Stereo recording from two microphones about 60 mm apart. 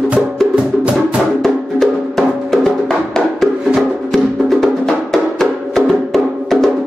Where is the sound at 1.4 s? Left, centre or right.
Centre.